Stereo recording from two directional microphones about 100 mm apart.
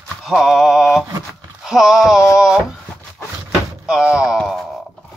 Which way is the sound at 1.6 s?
5° right (ahead or behind).